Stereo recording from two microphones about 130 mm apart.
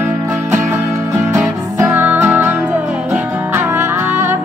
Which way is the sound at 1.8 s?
15° right (ahead or behind).